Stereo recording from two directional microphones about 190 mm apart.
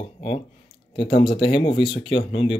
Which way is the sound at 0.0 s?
30° left (ahead or behind).